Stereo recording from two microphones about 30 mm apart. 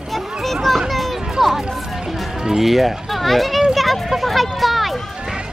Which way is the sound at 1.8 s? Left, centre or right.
Centre.